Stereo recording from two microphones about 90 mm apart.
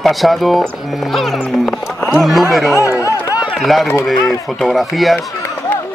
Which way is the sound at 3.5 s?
Centre (ahead or behind).